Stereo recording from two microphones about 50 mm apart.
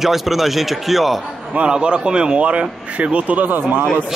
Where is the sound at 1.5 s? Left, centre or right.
Right.